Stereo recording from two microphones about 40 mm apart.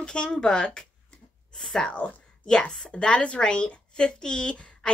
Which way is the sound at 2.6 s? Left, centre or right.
Left.